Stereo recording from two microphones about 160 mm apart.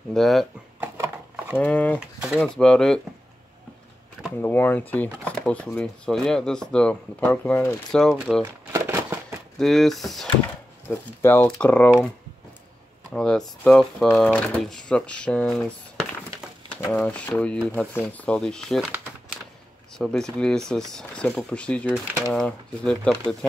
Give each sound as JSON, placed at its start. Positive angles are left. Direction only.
{"t": 0.1, "sound": "speech", "side_deg": 0}
{"t": 0.7, "sound": "a sound", "side_deg": -15}
{"t": 1.6, "sound": "speech", "side_deg": 10}
{"t": 2.1, "sound": "a sound", "side_deg": -5}
{"t": 2.4, "sound": "speech", "side_deg": 5}
{"t": 4.4, "sound": "speech", "side_deg": 10}
{"t": 8.7, "sound": "a sound", "side_deg": -15}
{"t": 9.6, "sound": "speech", "side_deg": 0}
{"t": 10.9, "sound": "speech", "side_deg": 15}
{"t": 13.1, "sound": "speech", "side_deg": 5}
{"t": 20.0, "sound": "speech", "side_deg": 5}